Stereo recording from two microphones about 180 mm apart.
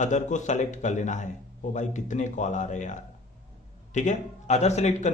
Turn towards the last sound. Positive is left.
turn(degrees=40)  # may be behind; listen again after turning